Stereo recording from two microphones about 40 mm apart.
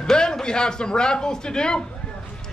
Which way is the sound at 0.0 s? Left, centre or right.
Centre.